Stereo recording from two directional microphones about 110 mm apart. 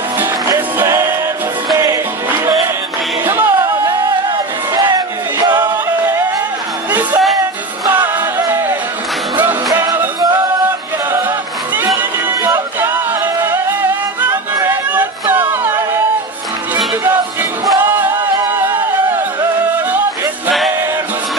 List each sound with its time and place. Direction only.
0.2 s music: 25° right (ahead or behind)
3.3 s music: 20° right (ahead or behind)
5.6 s music: 20° right (ahead or behind)
12.8 s music: 20° right (ahead or behind)
17.8 s music: 20° right (ahead or behind)